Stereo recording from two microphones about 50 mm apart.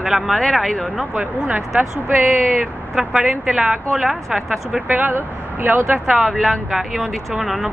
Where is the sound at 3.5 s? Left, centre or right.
Centre.